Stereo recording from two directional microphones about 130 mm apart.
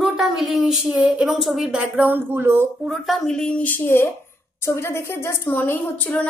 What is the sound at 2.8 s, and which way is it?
A woman's voice, centre (ahead or behind).